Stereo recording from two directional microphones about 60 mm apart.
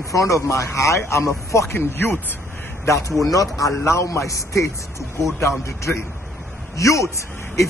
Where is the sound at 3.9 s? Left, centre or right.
Left.